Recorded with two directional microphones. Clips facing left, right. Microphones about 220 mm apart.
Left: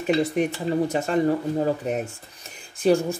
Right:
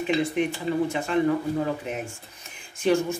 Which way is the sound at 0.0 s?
40° left (ahead or behind).